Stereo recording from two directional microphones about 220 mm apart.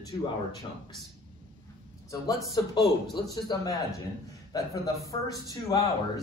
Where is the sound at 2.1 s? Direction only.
15° left (ahead or behind).